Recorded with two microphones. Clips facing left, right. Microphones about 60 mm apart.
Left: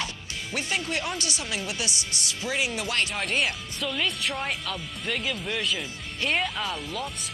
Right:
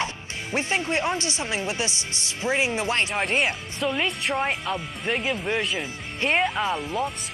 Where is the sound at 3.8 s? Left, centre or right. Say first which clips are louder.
Right 4 dB; right.